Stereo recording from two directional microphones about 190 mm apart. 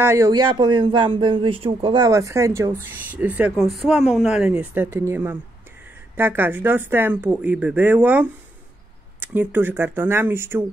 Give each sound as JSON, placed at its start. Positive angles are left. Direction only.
{"t": 0.0, "sound": "speech", "side_deg": -15}